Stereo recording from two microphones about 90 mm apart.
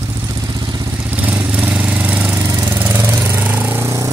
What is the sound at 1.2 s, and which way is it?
Vehicle, 20° right (ahead or behind).